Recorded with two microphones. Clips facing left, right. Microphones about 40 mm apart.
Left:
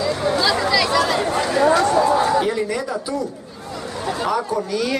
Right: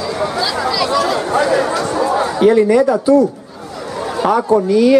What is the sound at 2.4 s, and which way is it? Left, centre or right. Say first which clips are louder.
Speech: right 12 dB; right.